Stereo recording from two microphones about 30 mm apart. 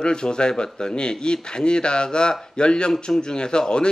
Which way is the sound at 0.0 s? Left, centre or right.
Left.